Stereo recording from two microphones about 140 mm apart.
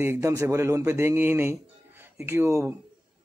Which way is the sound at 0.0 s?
20° right (ahead or behind).